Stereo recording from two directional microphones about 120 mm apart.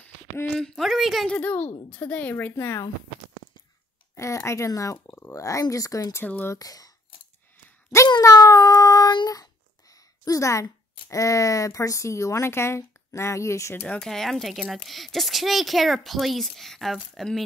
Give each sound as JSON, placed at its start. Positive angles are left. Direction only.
{"t": 0.6, "sound": "a woman's voice", "side_deg": 0}
{"t": 4.2, "sound": "speech", "side_deg": 25}
{"t": 6.5, "sound": "speech", "side_deg": 30}
{"t": 7.5, "sound": "a sound", "side_deg": 25}
{"t": 13.8, "sound": "speech", "side_deg": 5}